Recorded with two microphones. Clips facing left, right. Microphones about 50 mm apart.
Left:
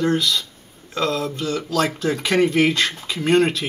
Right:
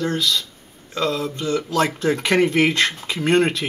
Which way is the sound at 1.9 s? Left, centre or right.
Centre.